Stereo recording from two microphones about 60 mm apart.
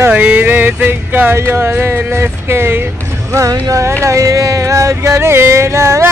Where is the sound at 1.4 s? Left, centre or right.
Right.